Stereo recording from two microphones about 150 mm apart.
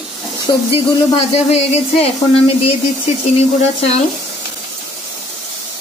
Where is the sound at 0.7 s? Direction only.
45° left (ahead or behind).